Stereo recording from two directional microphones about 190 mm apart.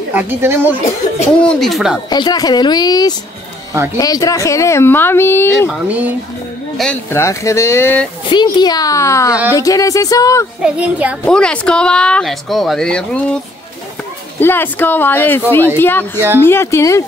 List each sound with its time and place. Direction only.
0.1 s a woman's voice: 10° right (ahead or behind)
1.4 s speech: 5° left (ahead or behind)
2.0 s speech: 20° left (ahead or behind)
5.7 s a woman's voice: 10° right (ahead or behind)
6.8 s speech: 10° left (ahead or behind)
8.3 s speech: 25° left (ahead or behind)
10.6 s a woman's voice: 5° right (ahead or behind)
11.2 s speech: 5° left (ahead or behind)
14.4 s speech: 10° left (ahead or behind)